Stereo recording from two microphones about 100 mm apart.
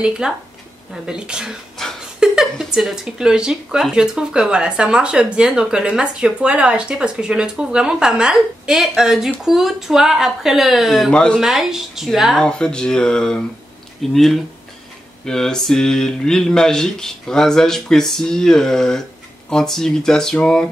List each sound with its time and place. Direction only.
0.2 s speech: 10° right (ahead or behind); by 11.3 s 10° left (ahead or behind)
11.3 s speech: 5° right (ahead or behind)
12.4 s a sound: 10° left (ahead or behind)
14.1 s speech: centre (ahead or behind)